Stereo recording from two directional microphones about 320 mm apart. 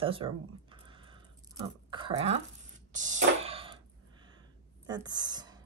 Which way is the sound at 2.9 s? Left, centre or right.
Right.